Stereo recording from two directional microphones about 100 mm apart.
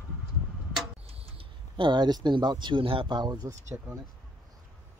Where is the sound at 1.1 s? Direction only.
65° right (ahead or behind); by 3.5 s 45° right (ahead or behind).